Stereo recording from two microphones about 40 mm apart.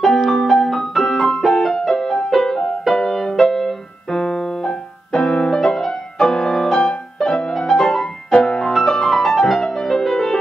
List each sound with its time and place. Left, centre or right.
0.0 s music: centre
3.0 s keyboard: centre
5.6 s music: centre
8.3 s music: left